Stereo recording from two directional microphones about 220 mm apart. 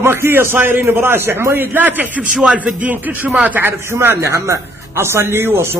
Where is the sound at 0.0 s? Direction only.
10° right (ahead or behind).